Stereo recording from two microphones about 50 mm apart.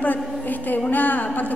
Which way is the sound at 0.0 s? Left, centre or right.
Left.